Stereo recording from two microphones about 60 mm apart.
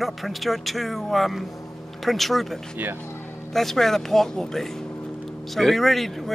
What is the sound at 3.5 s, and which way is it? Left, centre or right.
Speech, centre.